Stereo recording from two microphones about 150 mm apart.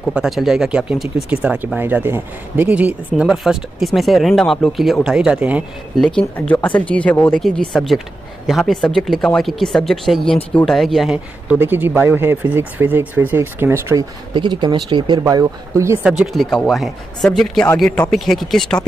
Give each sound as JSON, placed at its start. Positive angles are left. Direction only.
{"t": 0.1, "sound": "speech", "side_deg": 0}
{"t": 5.9, "sound": "speech", "side_deg": 5}
{"t": 14.3, "sound": "speech", "side_deg": -30}
{"t": 16.0, "sound": "speech", "side_deg": -5}